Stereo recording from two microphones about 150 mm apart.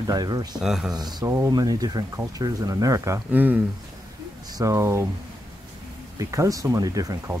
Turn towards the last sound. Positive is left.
turn(degrees=-25)  # may be behind; listen again after turning